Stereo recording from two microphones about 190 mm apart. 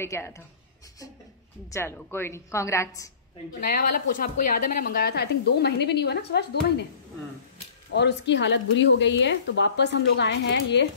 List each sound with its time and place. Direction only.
0.0 s a woman's voice: 15° left (ahead or behind)
1.7 s a woman's voice: 15° left (ahead or behind)
3.6 s speech: 50° left (ahead or behind)
7.9 s speech: 65° left (ahead or behind)